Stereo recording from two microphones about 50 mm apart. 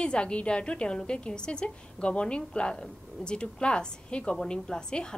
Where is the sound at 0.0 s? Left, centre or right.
Left.